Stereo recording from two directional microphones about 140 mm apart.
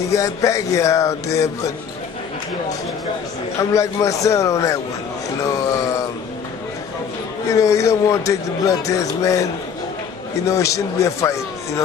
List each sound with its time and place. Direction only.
0.1 s a man's voice: 20° left (ahead or behind)
3.5 s a man's voice: 20° left (ahead or behind)
7.4 s a man's voice: 20° left (ahead or behind)